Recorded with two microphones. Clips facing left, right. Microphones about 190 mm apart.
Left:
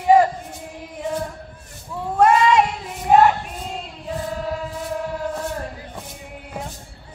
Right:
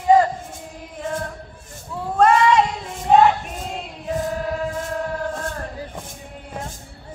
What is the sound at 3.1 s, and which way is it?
Female singing, 10° left (ahead or behind).